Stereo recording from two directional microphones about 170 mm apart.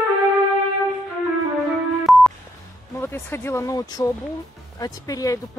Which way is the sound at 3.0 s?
15° left (ahead or behind).